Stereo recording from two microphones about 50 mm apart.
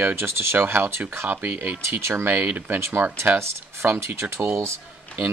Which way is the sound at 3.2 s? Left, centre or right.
Right.